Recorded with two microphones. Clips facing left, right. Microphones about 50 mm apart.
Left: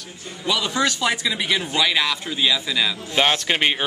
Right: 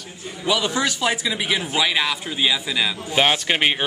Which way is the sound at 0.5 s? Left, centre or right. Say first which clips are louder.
Even; centre.